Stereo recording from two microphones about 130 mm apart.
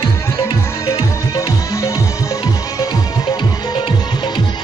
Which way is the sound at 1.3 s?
25° left (ahead or behind).